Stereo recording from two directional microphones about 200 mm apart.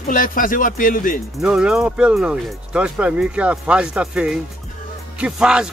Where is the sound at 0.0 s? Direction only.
45° left (ahead or behind).